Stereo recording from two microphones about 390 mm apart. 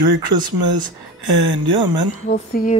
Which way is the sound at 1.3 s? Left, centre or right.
Right.